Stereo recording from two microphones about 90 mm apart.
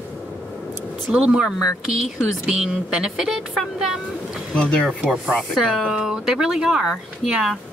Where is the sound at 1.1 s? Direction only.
10° right (ahead or behind).